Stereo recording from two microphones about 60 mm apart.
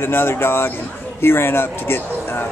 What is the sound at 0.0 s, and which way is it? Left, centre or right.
Speech, left.